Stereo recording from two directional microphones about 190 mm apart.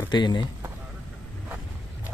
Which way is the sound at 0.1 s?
25° left (ahead or behind).